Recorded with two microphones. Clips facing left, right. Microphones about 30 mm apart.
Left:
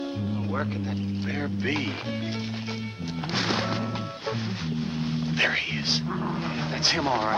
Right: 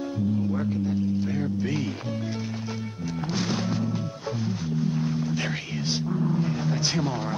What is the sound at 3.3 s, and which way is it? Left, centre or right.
Music, left.